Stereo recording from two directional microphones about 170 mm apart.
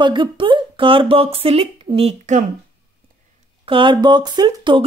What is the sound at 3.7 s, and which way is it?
Speech, 30° right (ahead or behind).